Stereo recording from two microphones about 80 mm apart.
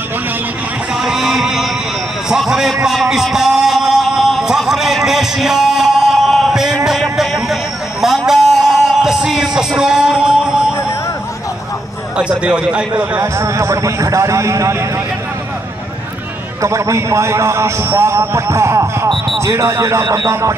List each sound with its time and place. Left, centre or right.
1.0 s a sound: centre
2.2 s music: centre
8.3 s music: centre
12.2 s a man's voice: centre
13.2 s a man's voice: right
16.6 s a man's voice: right